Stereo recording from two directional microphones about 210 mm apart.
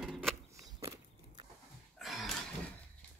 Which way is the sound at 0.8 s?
15° right (ahead or behind).